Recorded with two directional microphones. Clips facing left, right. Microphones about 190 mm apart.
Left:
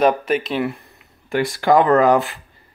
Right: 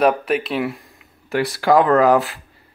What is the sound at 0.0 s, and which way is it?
Speech, centre (ahead or behind).